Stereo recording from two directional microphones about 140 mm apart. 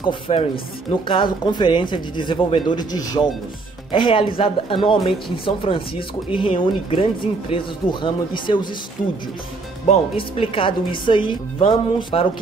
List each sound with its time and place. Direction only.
0.0 s speech: 40° left (ahead or behind)
3.9 s speech: 40° left (ahead or behind)
9.8 s speech: 40° left (ahead or behind)